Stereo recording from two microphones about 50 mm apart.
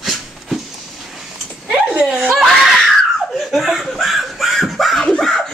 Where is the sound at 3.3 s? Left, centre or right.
Centre.